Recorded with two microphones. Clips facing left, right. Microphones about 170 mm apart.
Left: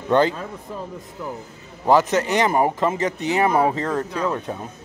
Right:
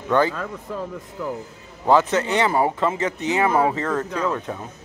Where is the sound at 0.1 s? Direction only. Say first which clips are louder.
Left 2 dB; 20° left (ahead or behind).